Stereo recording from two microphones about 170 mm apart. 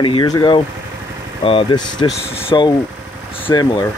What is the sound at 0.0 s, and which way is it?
Speech, 25° left (ahead or behind).